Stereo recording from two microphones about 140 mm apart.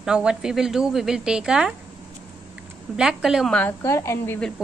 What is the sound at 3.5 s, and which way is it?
Speech, 10° left (ahead or behind).